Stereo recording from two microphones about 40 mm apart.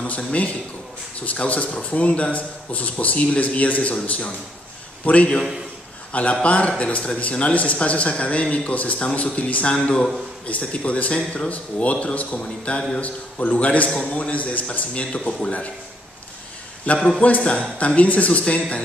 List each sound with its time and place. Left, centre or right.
0.2 s a man's voice: left
6.4 s a man's voice: left
11.5 s a man's voice: left
14.3 s a man's voice: left
16.8 s a man's voice: left